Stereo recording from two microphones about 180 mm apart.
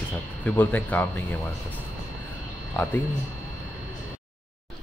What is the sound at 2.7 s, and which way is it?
Speech, 10° left (ahead or behind).